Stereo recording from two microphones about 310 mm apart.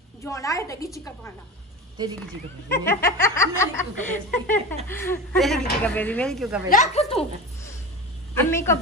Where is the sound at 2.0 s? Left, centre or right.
Centre.